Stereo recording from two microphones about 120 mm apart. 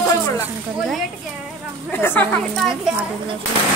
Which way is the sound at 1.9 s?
15° left (ahead or behind).